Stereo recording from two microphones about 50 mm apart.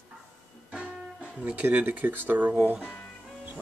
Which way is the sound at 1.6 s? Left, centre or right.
Right.